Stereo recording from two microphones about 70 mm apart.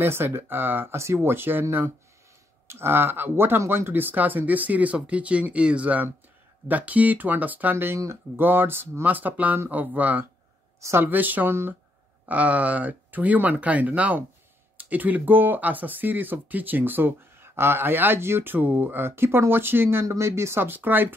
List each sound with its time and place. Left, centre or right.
0.0 s speech: right
7.7 s speech: right
10.8 s a woman's voice: right
11.1 s speech: right
12.3 s speech: right